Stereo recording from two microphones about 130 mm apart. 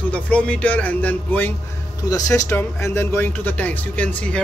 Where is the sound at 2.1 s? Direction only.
25° left (ahead or behind).